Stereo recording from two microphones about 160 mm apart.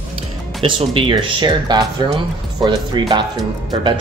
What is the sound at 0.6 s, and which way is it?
Speech, 35° right (ahead or behind).